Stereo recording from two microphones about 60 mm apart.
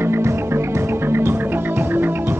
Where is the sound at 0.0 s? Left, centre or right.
Right.